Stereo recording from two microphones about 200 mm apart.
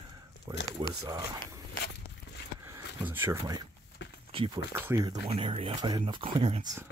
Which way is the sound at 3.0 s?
10° right (ahead or behind).